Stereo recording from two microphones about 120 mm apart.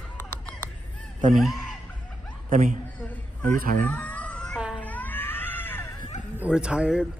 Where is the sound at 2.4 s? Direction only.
90° right.